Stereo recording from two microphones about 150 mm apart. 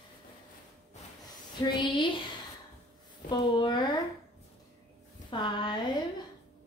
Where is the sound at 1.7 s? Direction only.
35° left (ahead or behind).